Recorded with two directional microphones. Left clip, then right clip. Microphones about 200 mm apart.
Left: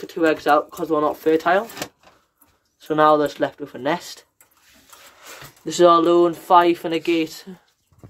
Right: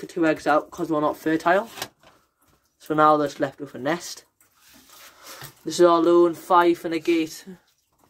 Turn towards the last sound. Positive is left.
turn(degrees=5)  # may be behind; listen again after turning